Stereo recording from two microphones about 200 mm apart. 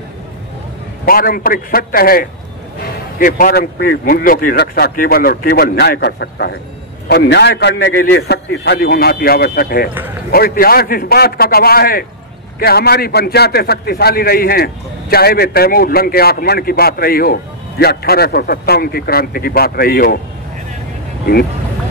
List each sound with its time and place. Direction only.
1.0 s a man's voice: 45° left (ahead or behind)